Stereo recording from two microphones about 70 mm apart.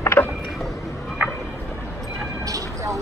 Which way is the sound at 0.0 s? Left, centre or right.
Left.